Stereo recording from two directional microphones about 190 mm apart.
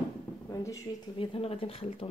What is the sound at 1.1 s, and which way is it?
Speech, 30° left (ahead or behind).